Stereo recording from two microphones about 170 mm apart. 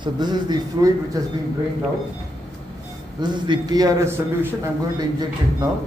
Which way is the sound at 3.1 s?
25° right (ahead or behind).